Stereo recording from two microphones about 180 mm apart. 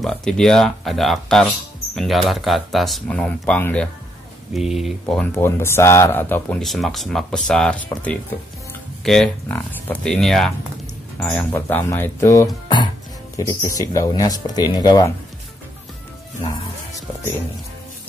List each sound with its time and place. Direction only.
0.0 s speech: 5° left (ahead or behind); by 15.1 s 20° left (ahead or behind)
16.4 s music: 20° left (ahead or behind)